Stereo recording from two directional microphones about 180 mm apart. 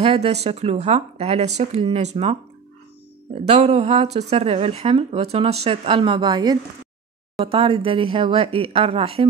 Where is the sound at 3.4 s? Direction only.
35° right (ahead or behind).